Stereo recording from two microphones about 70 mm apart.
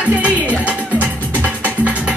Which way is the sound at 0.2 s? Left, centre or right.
Centre.